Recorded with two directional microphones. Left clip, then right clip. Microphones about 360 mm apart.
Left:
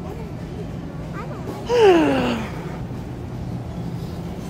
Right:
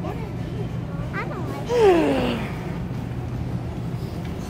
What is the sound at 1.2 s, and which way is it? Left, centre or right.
Gasp, centre.